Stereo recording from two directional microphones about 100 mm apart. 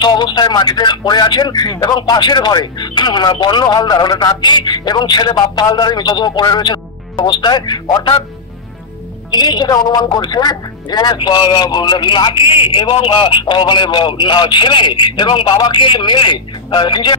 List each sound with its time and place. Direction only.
0.0 s speech: 45° left (ahead or behind)
9.3 s speech: 45° left (ahead or behind)